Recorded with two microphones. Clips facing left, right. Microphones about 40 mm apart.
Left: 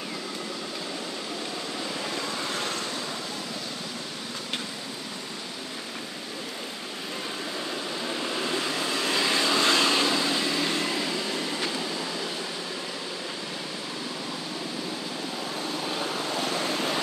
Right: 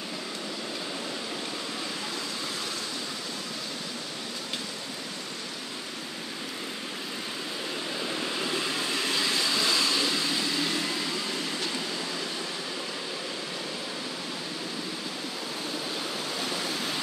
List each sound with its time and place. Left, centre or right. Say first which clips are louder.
9.3 s vehicle: left 6 dB; left
16.4 s vehicle: left 4 dB; left